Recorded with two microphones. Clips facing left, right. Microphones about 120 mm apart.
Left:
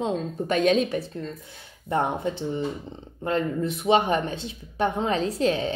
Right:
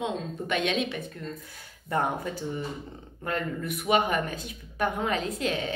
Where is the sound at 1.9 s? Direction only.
25° left (ahead or behind).